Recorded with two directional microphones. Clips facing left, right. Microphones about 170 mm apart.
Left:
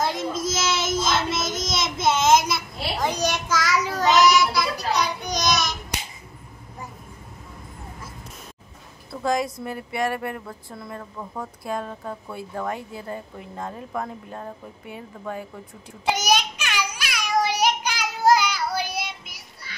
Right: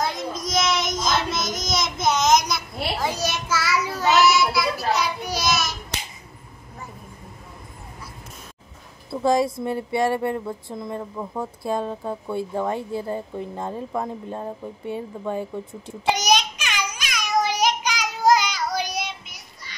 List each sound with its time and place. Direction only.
0.0 s child singing: 5° left (ahead or behind)
3.3 s child singing: 10° right (ahead or behind)
9.1 s speech: 30° right (ahead or behind)
16.1 s child singing: 5° left (ahead or behind)